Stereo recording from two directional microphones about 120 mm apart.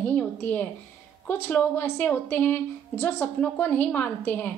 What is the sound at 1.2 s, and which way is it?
A woman's voice, 15° left (ahead or behind).